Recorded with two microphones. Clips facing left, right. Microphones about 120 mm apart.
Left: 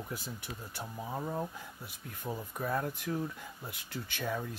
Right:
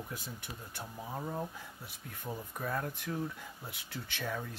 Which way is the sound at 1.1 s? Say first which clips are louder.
Left 2 dB; 15° left (ahead or behind).